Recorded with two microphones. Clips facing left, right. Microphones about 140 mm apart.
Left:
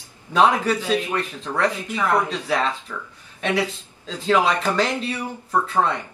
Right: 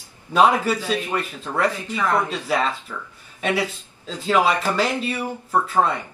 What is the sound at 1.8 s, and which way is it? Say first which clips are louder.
Speech: left 1 dB; 15° left (ahead or behind).